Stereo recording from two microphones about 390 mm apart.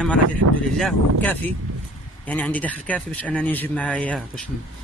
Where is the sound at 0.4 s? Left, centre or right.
Right.